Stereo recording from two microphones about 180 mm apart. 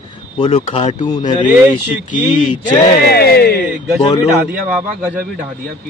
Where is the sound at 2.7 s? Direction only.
60° left (ahead or behind).